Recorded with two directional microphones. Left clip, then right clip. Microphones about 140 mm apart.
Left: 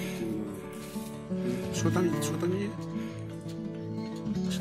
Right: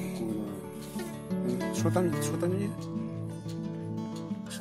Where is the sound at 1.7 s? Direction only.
20° right (ahead or behind).